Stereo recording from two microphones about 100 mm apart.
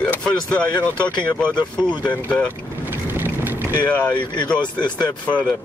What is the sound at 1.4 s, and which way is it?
Speech, 20° right (ahead or behind).